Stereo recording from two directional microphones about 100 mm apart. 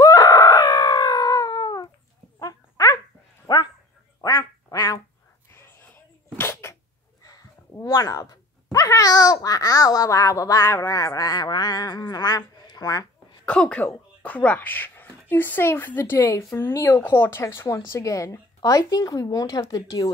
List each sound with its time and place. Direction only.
0.0 s a sound: 40° left (ahead or behind)
3.4 s dog: 45° left (ahead or behind)
4.2 s quack: 35° left (ahead or behind)
5.5 s a sound: 25° left (ahead or behind)
6.3 s sneeze: 25° left (ahead or behind)
7.8 s speech: 35° left (ahead or behind)
8.7 s babbling: 35° left (ahead or behind)
13.5 s speech: 10° left (ahead or behind); by 20.1 s 35° left (ahead or behind)